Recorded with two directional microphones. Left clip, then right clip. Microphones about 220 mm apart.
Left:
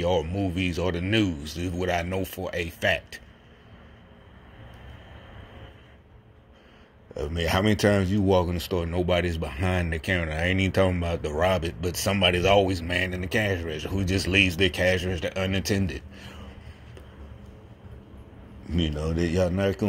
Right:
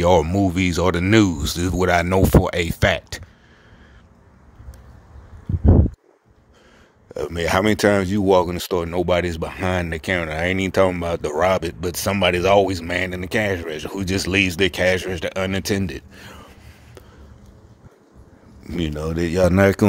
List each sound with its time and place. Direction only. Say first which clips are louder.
0.0 s speech: right 9 dB; 35° right (ahead or behind)
7.2 s speech: right 6 dB; 35° right (ahead or behind)
18.7 s speech: right 4 dB; 35° right (ahead or behind)